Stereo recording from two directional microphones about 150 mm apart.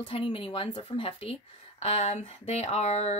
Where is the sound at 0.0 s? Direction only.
35° left (ahead or behind).